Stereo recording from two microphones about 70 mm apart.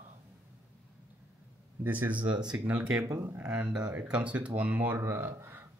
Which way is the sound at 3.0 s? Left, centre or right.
Right.